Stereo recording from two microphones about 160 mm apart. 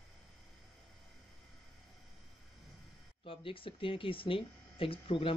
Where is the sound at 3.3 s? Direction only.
35° left (ahead or behind).